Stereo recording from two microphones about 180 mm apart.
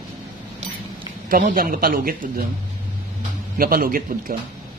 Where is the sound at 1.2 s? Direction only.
50° right (ahead or behind).